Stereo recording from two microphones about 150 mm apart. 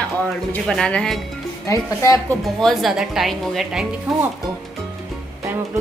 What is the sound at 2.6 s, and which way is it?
Speech, centre (ahead or behind).